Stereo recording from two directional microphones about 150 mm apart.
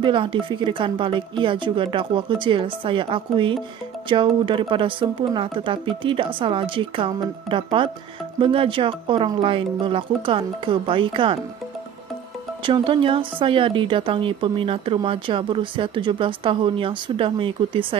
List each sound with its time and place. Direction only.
0.0 s speech: 35° right (ahead or behind)
12.6 s speech: 35° right (ahead or behind)